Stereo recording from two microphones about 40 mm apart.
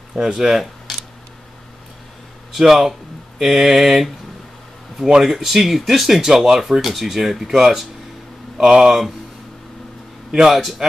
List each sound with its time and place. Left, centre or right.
0.1 s speech: centre
2.6 s speech: centre
8.5 s speech: right
10.5 s speech: centre